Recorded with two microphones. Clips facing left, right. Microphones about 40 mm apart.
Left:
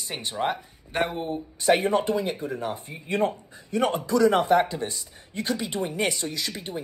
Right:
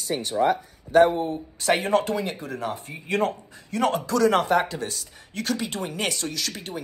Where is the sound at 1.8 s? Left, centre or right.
Right.